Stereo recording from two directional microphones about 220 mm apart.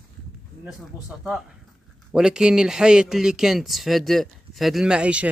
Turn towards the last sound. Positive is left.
turn(degrees=-5)  # may be behind; listen again after turning